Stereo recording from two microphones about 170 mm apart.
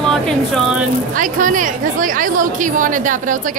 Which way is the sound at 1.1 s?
50° right (ahead or behind).